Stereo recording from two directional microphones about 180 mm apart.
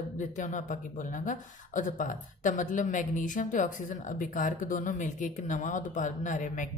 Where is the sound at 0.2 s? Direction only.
45° left (ahead or behind).